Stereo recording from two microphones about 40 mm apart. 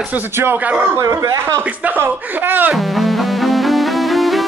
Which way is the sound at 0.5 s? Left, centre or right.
Right.